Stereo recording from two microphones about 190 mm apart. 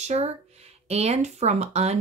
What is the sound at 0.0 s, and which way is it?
Speech, 35° right (ahead or behind).